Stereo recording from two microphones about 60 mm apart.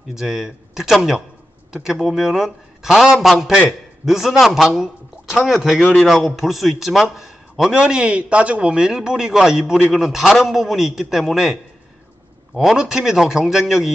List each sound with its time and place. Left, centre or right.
0.1 s a man's voice: centre
12.5 s a man's voice: centre